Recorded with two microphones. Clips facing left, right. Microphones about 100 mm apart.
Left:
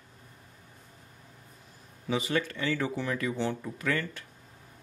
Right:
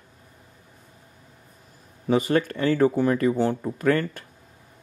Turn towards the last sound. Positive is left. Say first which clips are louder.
# right 9 dB
turn(degrees=-45)  # may be behind; listen again after turning